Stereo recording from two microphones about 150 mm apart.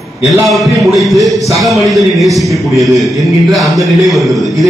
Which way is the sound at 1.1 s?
Centre (ahead or behind).